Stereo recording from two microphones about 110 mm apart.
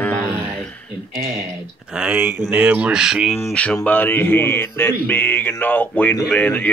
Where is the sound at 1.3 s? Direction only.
5° right (ahead or behind).